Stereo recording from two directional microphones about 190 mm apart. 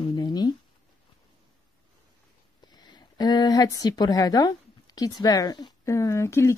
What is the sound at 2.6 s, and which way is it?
A woman's voice, 20° left (ahead or behind).